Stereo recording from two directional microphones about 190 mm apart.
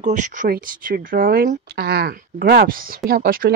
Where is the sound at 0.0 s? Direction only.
40° right (ahead or behind).